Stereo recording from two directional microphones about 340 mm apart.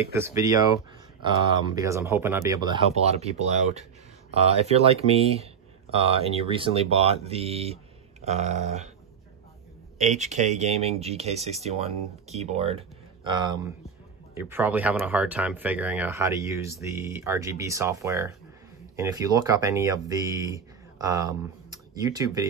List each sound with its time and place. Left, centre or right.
0.1 s speech: centre
1.8 s speech: centre
9.9 s speech: right